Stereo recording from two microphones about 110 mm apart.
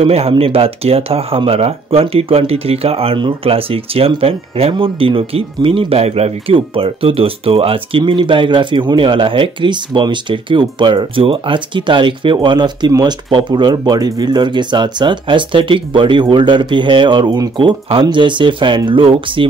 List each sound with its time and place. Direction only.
0.0 s speech: 65° right (ahead or behind)